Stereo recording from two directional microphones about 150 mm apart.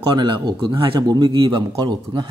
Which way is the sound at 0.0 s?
30° right (ahead or behind).